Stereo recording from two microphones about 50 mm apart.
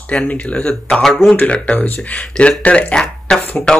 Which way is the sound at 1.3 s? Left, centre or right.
Left.